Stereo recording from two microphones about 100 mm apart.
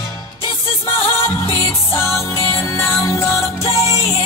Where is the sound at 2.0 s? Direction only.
25° left (ahead or behind).